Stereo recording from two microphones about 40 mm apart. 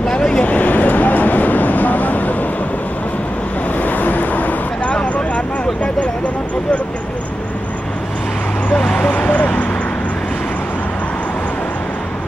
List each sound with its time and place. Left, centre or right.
0.1 s a sound: left
0.5 s vehicle: left
3.7 s vehicle: left
4.8 s vehicle: left
8.7 s vehicle: centre
9.1 s a sound: left